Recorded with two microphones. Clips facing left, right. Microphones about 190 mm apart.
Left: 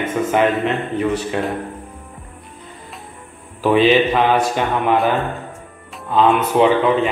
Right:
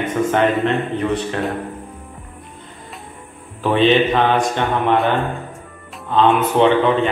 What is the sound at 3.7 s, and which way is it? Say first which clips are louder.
A man's voice: even; 5° left (ahead or behind).